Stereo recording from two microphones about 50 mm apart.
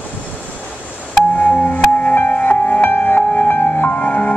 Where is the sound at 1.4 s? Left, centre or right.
Left.